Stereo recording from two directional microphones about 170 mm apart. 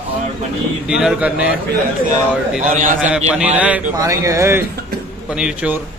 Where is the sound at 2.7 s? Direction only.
50° right (ahead or behind).